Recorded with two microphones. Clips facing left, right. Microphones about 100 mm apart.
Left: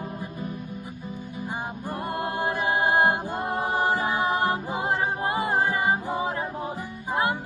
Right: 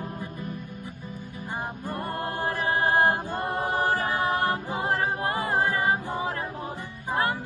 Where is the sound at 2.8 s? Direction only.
Centre (ahead or behind).